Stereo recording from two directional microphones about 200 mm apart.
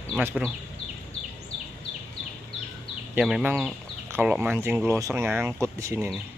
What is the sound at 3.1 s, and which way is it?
Speech, 5° right (ahead or behind).